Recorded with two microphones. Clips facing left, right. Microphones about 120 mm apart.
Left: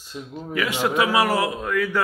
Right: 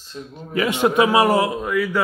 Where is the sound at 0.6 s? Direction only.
20° right (ahead or behind).